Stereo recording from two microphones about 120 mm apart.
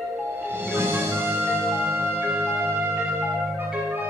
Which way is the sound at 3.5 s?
15° right (ahead or behind).